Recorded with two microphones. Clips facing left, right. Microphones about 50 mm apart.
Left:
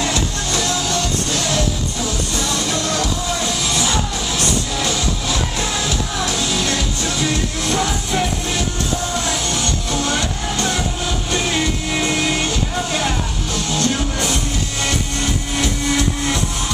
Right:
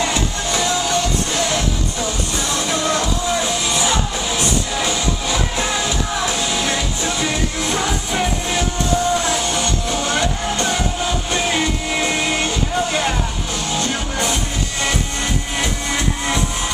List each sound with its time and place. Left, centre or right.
0.0 s music: centre